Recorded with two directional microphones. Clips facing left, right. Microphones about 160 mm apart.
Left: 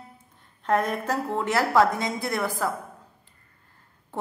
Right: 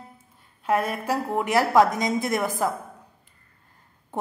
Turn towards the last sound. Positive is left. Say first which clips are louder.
# right 2 dB
turn(degrees=-20)  # may be behind; listen again after turning